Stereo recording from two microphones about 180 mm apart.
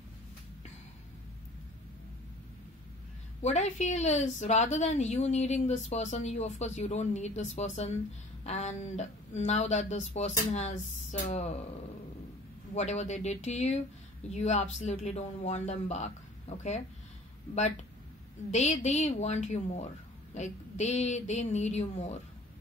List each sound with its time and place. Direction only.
3.4 s a woman's voice: 40° left (ahead or behind)
12.7 s a woman's voice: 40° left (ahead or behind)
18.5 s a woman's voice: 40° left (ahead or behind)